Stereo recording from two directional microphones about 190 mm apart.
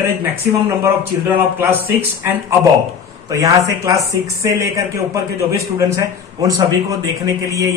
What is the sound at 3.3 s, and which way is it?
Speech, 15° right (ahead or behind).